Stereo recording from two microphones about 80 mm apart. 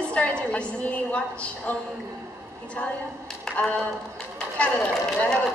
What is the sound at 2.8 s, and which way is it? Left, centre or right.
A woman's voice, left.